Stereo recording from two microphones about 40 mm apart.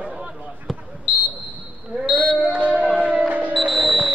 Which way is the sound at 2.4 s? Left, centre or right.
Right.